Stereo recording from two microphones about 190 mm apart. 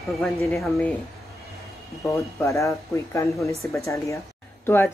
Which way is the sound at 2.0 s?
15° left (ahead or behind).